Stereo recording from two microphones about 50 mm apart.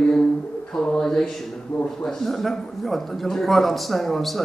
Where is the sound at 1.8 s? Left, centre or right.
Centre.